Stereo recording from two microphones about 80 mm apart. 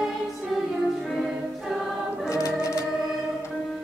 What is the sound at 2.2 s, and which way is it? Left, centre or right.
Organ, left.